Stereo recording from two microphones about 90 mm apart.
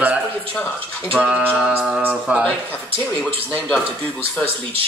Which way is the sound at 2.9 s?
15° left (ahead or behind).